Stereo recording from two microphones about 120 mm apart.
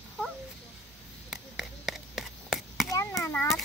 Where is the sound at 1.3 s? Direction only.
Centre (ahead or behind).